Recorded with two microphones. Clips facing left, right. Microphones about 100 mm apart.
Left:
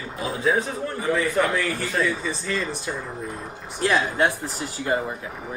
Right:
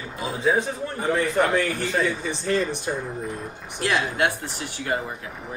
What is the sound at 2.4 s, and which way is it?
Speech, 55° right (ahead or behind).